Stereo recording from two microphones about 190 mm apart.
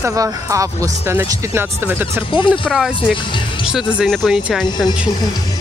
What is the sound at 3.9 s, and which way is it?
Speech, centre (ahead or behind).